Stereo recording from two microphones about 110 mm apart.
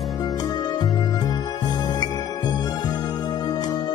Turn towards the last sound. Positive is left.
turn(degrees=40)  # may be behind; listen again after turning